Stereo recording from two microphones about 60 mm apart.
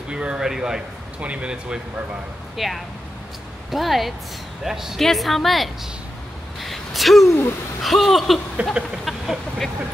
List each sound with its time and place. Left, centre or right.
0.1 s a sound: centre
0.5 s speech: centre
2.5 s a woman's voice: centre
6.6 s a sound: centre
7.8 s a woman's voice: centre
8.6 s speech: right
9.0 s vehicle: centre